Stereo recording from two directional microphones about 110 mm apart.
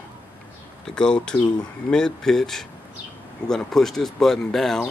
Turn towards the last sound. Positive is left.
turn(degrees=5)  # may be behind; listen again after turning